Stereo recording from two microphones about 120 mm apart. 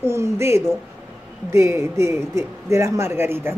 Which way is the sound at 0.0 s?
20° right (ahead or behind).